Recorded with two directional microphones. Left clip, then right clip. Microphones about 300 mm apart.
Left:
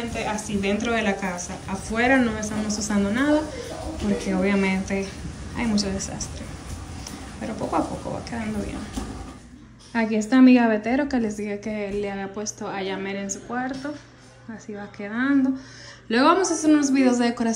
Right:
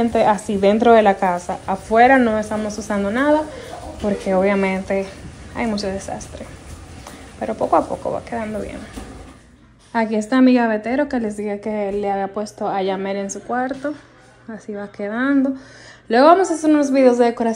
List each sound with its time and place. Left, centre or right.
0.3 s a woman's voice: right
0.6 s speech: centre
9.9 s speech: centre
13.8 s a woman's voice: right
15.0 s speech: centre